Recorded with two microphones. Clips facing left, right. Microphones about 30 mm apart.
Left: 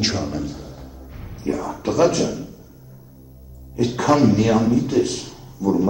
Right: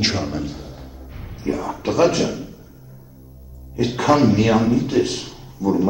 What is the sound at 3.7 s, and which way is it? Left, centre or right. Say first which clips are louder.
A man's voice: right 1 dB; right.